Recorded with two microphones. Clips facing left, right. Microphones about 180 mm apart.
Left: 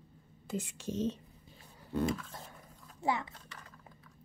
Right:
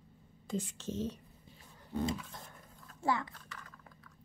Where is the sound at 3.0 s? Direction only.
20° left (ahead or behind).